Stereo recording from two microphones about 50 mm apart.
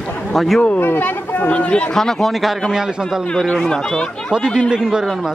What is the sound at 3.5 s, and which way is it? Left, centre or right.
Speech, centre.